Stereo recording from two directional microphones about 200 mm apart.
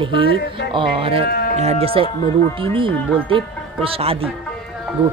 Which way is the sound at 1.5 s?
30° right (ahead or behind).